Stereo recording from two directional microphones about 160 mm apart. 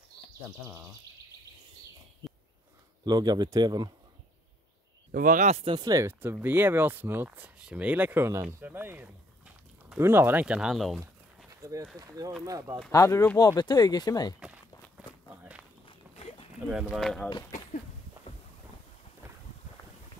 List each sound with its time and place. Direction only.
3.1 s speech: 25° right (ahead or behind)
5.1 s speech: 55° right (ahead or behind); by 11.0 s centre (ahead or behind)
11.6 s speech: 20° right (ahead or behind)
12.9 s speech: 20° left (ahead or behind)
14.4 s walk: 10° right (ahead or behind)
15.8 s walk: 35° left (ahead or behind)
16.5 s speech: 10° right (ahead or behind)
16.9 s speech: 5° left (ahead or behind)